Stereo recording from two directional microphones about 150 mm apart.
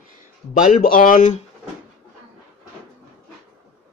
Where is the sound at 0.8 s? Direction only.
65° left (ahead or behind).